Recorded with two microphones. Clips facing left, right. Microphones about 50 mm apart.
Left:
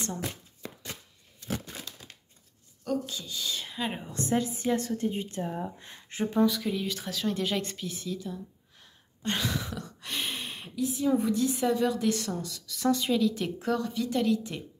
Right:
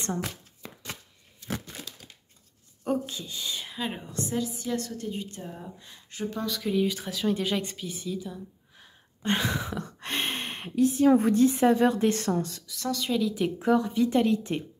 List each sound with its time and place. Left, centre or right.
2.8 s a woman's voice: right
3.5 s speech: centre
4.3 s a woman's voice: left
6.5 s a woman's voice: centre; by 11.4 s right
11.4 s a woman's voice: right
12.8 s a woman's voice: centre
13.1 s a woman's voice: centre; by 14.6 s right